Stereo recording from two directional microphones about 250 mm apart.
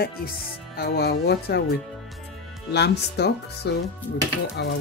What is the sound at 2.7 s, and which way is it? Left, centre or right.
Speech, left.